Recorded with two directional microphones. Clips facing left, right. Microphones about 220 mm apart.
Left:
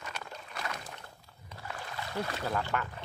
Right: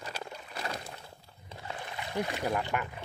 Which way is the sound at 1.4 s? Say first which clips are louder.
Right 2 dB; 25° right (ahead or behind).